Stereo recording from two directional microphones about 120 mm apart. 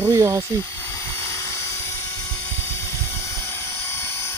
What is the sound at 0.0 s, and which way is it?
Speech, 25° right (ahead or behind).